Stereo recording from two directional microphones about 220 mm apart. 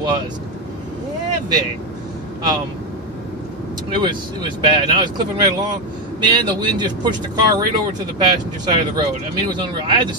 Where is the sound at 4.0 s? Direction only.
20° right (ahead or behind).